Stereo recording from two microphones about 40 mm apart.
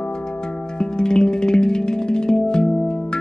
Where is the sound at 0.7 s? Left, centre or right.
Centre.